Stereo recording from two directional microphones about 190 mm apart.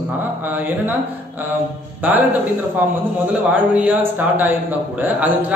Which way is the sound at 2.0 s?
10° right (ahead or behind).